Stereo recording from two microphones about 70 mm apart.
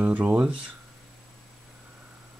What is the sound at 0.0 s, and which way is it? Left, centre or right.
Speech, centre.